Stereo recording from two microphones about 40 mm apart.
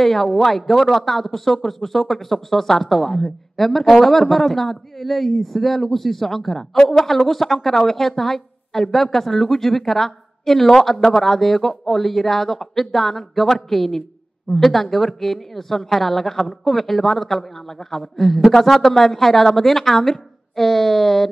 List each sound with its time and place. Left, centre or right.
0.0 s a man's voice: centre
6.8 s a woman's voice: centre